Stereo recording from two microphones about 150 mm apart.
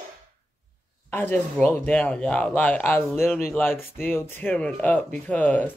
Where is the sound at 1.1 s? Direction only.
10° left (ahead or behind).